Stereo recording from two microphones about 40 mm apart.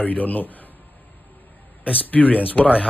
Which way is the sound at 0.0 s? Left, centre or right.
Left.